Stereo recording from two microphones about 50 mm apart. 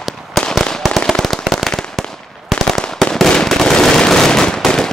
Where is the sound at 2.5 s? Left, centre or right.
Centre.